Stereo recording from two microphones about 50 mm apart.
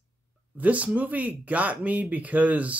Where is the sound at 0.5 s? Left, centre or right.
Right.